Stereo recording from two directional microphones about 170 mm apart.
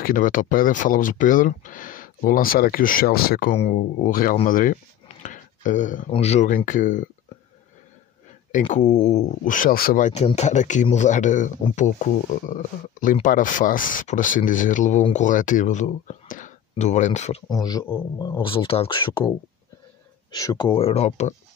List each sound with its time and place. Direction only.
0.0 s speech: 55° left (ahead or behind)
3.5 s speech: 45° left (ahead or behind)
4.5 s a sound: 50° left (ahead or behind)
6.1 s speech: 40° left (ahead or behind)
8.5 s speech: 45° left (ahead or behind)
17.5 s speech: 20° left (ahead or behind); by 21.4 s 40° left (ahead or behind)